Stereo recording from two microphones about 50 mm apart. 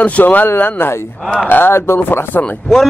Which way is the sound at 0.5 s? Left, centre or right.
Left.